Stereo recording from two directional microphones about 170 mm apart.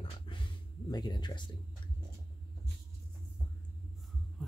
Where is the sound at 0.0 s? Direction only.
30° left (ahead or behind).